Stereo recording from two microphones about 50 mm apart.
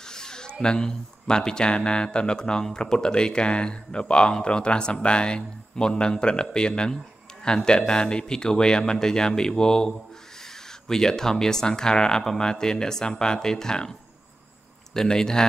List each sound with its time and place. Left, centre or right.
0.0 s speech: centre
15.0 s speech: centre